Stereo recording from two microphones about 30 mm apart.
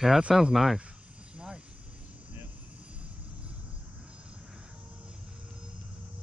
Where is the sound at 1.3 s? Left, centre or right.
Right.